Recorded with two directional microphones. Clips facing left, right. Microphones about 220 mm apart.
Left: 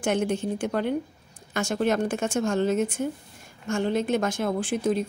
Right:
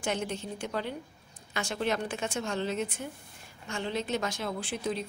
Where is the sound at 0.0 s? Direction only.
50° left (ahead or behind).